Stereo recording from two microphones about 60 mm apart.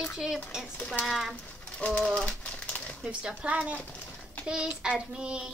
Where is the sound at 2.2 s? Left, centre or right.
Left.